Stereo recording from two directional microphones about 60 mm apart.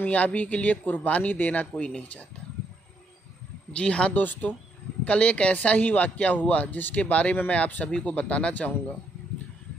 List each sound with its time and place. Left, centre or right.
0.0 s a man's voice: left
3.7 s a man's voice: centre